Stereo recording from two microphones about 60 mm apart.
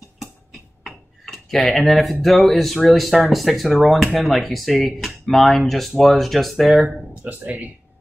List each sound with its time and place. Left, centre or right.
0.8 s speech: centre
7.2 s speech: centre